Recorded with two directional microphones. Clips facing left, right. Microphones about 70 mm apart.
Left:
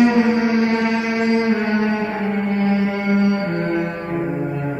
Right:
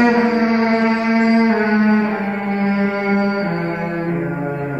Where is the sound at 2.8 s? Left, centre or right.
Right.